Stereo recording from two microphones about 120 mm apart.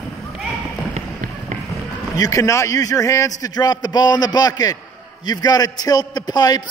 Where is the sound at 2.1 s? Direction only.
30° left (ahead or behind).